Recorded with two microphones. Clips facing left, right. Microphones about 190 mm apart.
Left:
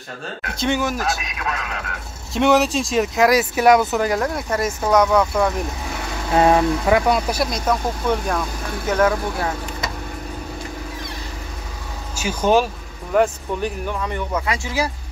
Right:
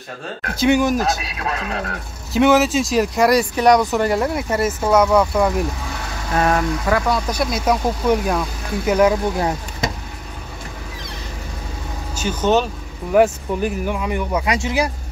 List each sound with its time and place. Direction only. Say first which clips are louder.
0.6 s speech: right 6 dB; 15° right (ahead or behind)
1.0 s speech: right 2 dB; 30° right (ahead or behind)
2.3 s speech: right 2 dB; centre (ahead or behind)
6.3 s speech: left 3 dB; 20° left (ahead or behind)
7.5 s speech: right 3 dB; 10° right (ahead or behind)
12.2 s speech: even; 10° left (ahead or behind)
13.1 s speech: right 3 dB; 5° right (ahead or behind)